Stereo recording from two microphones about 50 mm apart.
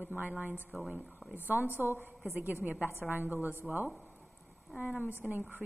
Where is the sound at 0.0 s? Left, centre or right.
Right.